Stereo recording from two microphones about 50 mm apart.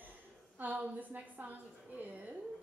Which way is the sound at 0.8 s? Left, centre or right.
Right.